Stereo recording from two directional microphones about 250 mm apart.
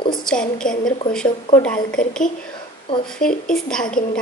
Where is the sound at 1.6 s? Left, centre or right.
Centre.